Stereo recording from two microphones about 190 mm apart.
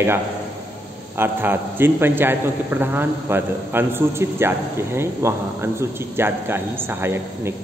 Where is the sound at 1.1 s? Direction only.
10° right (ahead or behind).